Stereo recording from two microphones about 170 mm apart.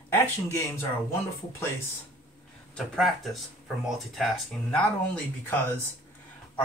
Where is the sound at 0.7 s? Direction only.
15° left (ahead or behind).